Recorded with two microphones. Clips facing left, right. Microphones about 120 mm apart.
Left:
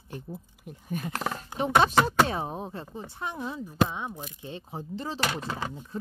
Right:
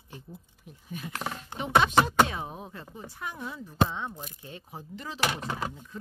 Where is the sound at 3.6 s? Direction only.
15° left (ahead or behind).